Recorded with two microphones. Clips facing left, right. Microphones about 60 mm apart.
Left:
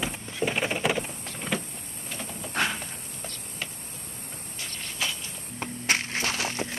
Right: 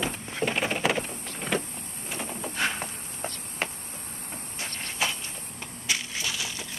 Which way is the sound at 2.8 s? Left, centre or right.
Right.